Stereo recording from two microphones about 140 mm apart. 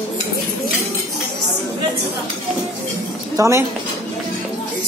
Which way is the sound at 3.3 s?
20° right (ahead or behind).